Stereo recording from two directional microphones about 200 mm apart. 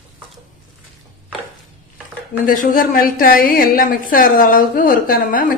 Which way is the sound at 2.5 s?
45° left (ahead or behind).